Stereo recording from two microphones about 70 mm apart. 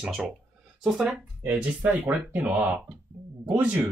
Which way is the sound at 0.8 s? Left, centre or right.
Centre.